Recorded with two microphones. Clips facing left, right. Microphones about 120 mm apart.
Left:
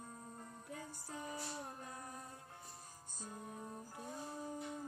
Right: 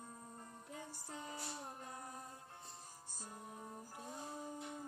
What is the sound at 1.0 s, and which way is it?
Music, 20° right (ahead or behind).